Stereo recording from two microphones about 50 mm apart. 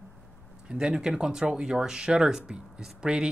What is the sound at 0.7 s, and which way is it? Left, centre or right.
Speech, centre.